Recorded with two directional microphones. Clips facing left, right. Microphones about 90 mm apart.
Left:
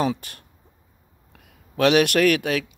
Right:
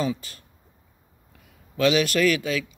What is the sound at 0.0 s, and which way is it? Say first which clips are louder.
A man's voice: left 3 dB; 60° left (ahead or behind).